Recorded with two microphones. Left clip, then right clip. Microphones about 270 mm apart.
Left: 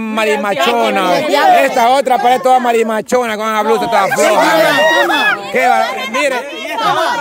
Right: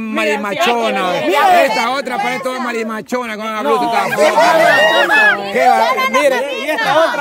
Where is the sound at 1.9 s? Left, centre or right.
Centre.